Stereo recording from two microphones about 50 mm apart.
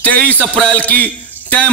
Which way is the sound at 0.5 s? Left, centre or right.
Centre.